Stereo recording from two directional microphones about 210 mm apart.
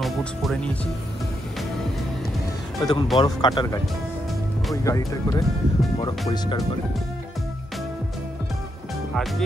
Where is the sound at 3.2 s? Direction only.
20° left (ahead or behind).